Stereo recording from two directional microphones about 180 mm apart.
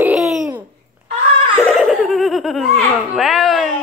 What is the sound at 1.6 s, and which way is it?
Laughter, centre (ahead or behind).